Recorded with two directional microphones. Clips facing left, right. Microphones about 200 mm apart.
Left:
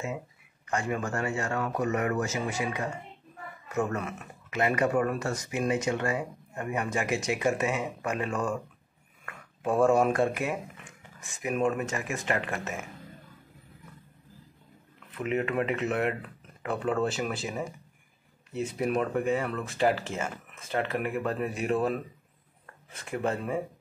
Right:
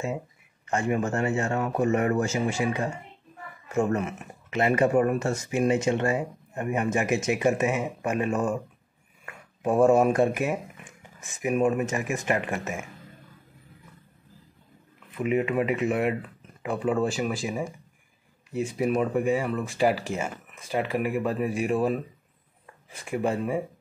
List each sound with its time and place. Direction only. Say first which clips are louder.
0.7 s speech: right 5 dB; 25° right (ahead or behind)
15.1 s speech: right 4 dB; 10° right (ahead or behind)